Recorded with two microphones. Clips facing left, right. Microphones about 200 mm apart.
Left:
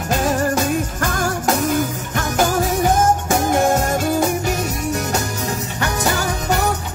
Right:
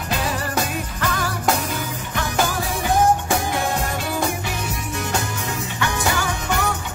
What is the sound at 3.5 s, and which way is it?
Music, 45° left (ahead or behind).